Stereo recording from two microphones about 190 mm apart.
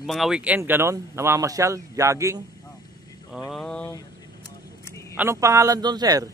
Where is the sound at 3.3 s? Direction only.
Centre (ahead or behind).